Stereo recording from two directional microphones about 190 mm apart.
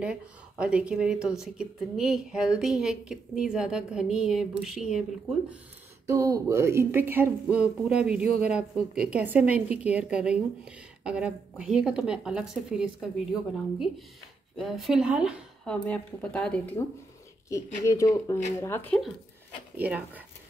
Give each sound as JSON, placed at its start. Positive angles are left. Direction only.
{"t": 0.0, "sound": "a woman's voice", "side_deg": -5}
{"t": 6.0, "sound": "a woman's voice", "side_deg": -15}
{"t": 15.7, "sound": "a woman's voice", "side_deg": 5}
{"t": 17.5, "sound": "speech", "side_deg": 15}
{"t": 19.8, "sound": "a woman's voice", "side_deg": -10}